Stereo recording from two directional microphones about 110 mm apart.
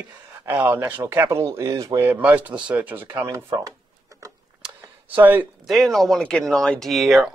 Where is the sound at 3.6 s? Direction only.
30° right (ahead or behind).